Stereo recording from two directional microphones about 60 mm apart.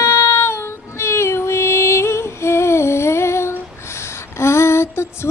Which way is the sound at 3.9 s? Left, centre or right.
Left.